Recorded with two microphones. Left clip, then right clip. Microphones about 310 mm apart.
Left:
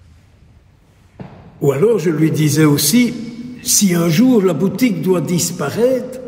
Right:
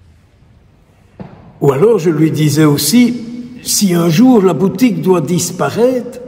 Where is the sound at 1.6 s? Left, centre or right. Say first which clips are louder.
Right 4 dB; centre.